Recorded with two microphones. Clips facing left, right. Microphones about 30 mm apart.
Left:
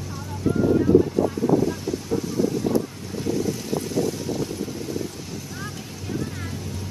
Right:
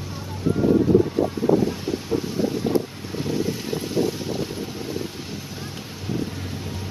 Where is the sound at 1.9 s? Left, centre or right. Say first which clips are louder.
Right 1 dB; right.